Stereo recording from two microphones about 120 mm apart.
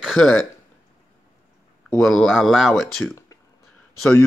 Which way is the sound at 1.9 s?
5° left (ahead or behind).